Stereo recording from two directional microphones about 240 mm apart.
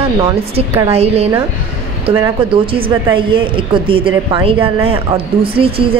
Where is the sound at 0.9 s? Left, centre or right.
Right.